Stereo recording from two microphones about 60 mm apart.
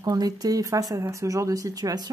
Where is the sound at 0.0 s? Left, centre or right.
Right.